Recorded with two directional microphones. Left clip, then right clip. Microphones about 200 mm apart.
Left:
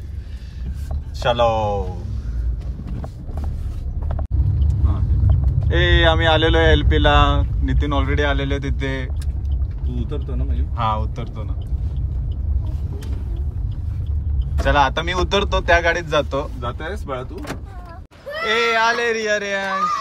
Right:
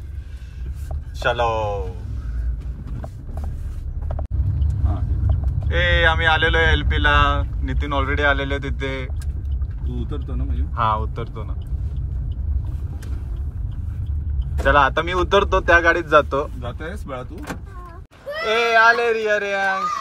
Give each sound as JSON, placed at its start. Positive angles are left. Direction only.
{"t": 1.2, "sound": "speech", "side_deg": 10}
{"t": 5.7, "sound": "speech", "side_deg": 20}
{"t": 14.6, "sound": "speech", "side_deg": 5}
{"t": 18.3, "sound": "speech", "side_deg": 5}